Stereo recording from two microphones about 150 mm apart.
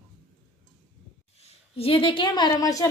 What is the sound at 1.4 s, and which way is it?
A woman's voice, 40° left (ahead or behind).